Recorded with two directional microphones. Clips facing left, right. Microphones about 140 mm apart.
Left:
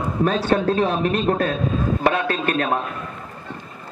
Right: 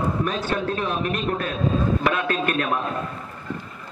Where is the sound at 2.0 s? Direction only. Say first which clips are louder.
Left 2 dB; 35° left (ahead or behind).